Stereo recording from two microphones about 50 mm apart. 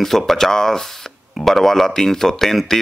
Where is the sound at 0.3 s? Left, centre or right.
Centre.